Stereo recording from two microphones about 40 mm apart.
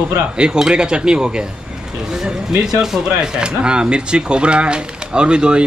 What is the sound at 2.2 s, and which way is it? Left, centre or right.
Speech, centre.